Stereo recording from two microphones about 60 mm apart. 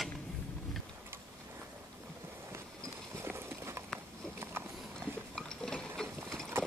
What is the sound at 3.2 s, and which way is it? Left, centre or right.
Clip-clop, right.